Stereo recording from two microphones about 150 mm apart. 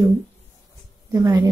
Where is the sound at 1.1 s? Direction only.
25° right (ahead or behind).